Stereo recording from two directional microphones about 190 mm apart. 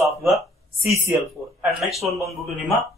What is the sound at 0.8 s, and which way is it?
Speech, 15° right (ahead or behind).